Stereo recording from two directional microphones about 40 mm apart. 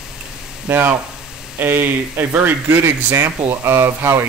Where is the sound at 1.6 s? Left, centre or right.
Right.